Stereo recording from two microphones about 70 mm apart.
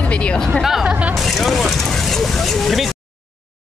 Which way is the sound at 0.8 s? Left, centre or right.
Centre.